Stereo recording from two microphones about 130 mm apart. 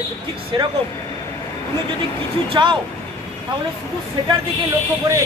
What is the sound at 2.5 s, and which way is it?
Speech, 35° right (ahead or behind).